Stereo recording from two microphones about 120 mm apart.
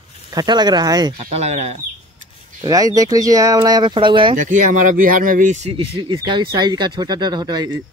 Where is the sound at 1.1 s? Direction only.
60° right (ahead or behind).